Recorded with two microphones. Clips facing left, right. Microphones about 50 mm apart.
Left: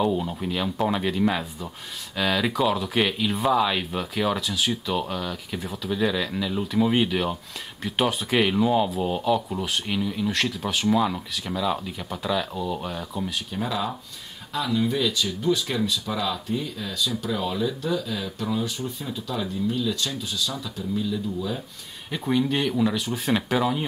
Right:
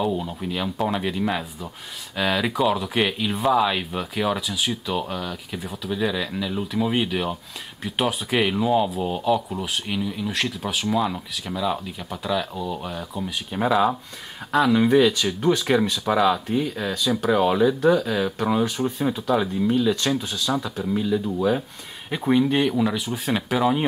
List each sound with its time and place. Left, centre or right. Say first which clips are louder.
0.0 s speech: left 1 dB; centre
13.5 s speech: right 7 dB; right
14.7 s speech: right 6 dB; right
16.3 s speech: right 6 dB; right
22.1 s speech: right 4 dB; centre